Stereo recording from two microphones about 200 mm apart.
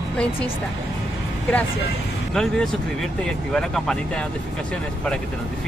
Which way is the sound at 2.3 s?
Centre (ahead or behind).